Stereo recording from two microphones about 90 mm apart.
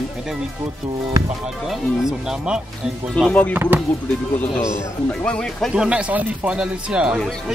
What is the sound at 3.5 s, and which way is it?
Speech, 25° right (ahead or behind).